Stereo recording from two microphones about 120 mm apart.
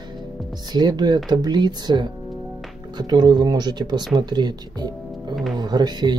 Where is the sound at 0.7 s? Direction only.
35° right (ahead or behind).